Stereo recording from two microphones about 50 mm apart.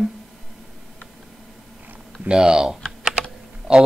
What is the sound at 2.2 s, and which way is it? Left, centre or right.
Speech, centre.